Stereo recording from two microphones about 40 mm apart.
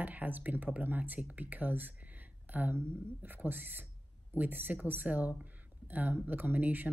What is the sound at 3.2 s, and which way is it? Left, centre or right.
Speech, right.